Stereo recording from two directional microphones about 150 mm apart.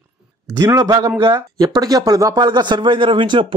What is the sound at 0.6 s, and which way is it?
Speech, 25° right (ahead or behind).